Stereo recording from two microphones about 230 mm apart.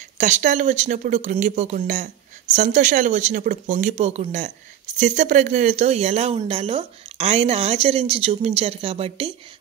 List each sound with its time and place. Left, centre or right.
0.2 s speech: right